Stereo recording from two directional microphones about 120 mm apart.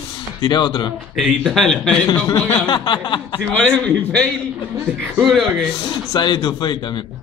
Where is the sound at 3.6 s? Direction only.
5° left (ahead or behind).